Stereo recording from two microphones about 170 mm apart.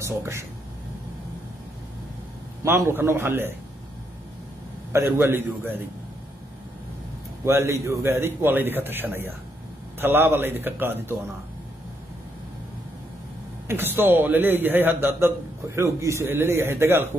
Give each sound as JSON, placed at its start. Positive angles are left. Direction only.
{"t": 0.0, "sound": "speech", "side_deg": -15}
{"t": 2.6, "sound": "a man's voice", "side_deg": -15}
{"t": 4.9, "sound": "a man's voice", "side_deg": -15}
{"t": 7.4, "sound": "a man's voice", "side_deg": -15}
{"t": 13.7, "sound": "a man's voice", "side_deg": -10}